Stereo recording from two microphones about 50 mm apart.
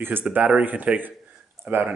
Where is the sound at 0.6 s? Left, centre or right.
Right.